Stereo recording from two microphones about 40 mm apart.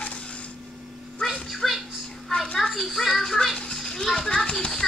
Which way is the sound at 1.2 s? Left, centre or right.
Centre.